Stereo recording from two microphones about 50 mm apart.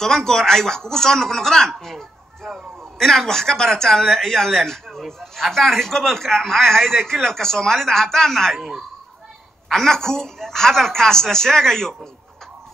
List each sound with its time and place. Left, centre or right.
0.0 s speech: centre
9.7 s speech: centre